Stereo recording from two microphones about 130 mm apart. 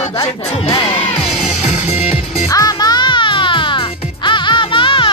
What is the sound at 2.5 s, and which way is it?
Music, 30° left (ahead or behind).